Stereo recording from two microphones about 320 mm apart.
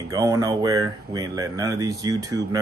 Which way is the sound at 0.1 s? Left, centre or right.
Centre.